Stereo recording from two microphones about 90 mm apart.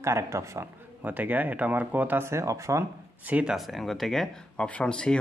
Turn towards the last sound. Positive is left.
turn(degrees=10)  # may be behind; listen again after turning